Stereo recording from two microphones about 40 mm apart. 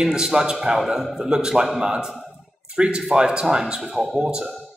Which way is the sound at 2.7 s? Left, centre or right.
Right.